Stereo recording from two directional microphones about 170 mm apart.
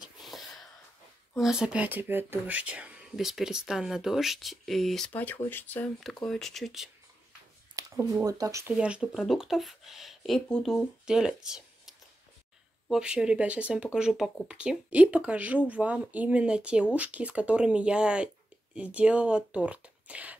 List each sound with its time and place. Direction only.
0.2 s a sound: centre (ahead or behind)
1.3 s speech: 5° right (ahead or behind)
7.7 s speech: 20° right (ahead or behind)
8.7 s speech: 5° right (ahead or behind)
12.9 s speech: 5° right (ahead or behind)